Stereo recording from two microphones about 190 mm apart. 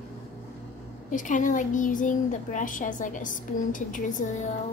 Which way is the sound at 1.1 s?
45° left (ahead or behind).